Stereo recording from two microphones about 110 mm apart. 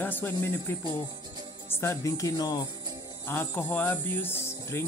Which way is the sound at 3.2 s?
20° left (ahead or behind).